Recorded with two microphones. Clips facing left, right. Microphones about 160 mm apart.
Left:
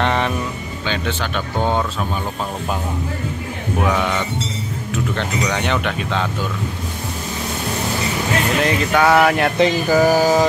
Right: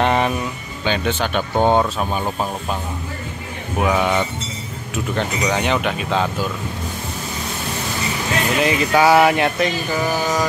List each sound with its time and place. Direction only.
0.0 s music: 10° right (ahead or behind)
0.8 s speech: 15° right (ahead or behind)
3.8 s speech: 15° right (ahead or behind)
8.5 s speech: 5° right (ahead or behind)
9.6 s speech: 40° left (ahead or behind)